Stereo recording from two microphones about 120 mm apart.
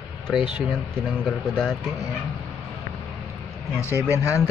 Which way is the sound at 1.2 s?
5° left (ahead or behind).